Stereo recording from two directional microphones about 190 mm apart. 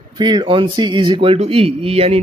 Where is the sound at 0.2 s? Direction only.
20° right (ahead or behind).